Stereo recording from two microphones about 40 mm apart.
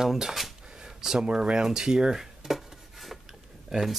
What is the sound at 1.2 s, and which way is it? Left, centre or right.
Rub, right.